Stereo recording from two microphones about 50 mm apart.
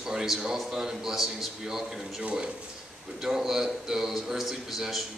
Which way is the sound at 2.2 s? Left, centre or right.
Centre.